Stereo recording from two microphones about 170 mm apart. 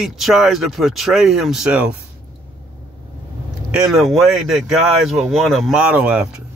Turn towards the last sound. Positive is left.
turn(degrees=-5)  # may be behind; listen again after turning